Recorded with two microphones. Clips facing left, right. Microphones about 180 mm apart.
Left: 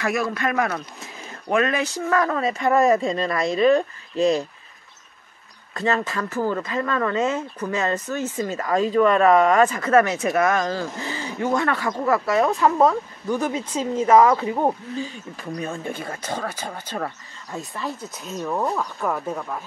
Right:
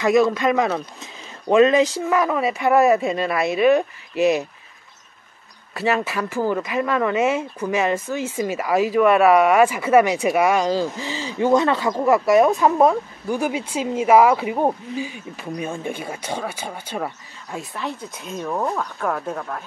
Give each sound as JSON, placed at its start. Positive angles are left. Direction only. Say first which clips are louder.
{"t": 0.0, "sound": "speech", "louder": "right 7 dB", "side_deg": -20}
{"t": 5.8, "sound": "speech", "louder": "right 2 dB", "side_deg": -10}